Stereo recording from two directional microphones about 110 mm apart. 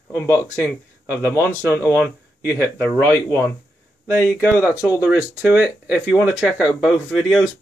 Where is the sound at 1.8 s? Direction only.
10° right (ahead or behind).